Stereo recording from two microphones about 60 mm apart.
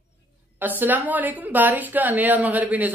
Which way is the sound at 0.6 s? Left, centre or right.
Right.